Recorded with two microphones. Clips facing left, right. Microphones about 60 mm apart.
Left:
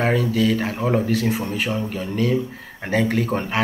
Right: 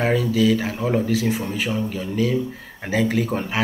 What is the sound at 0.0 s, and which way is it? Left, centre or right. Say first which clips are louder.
Speech: even; centre.